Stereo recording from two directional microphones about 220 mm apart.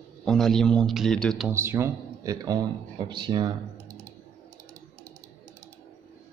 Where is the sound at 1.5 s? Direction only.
10° right (ahead or behind).